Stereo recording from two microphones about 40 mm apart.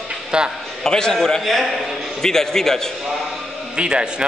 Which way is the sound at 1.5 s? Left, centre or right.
Centre.